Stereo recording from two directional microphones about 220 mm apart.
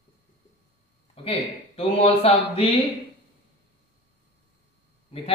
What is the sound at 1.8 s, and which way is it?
Speech, 25° left (ahead or behind).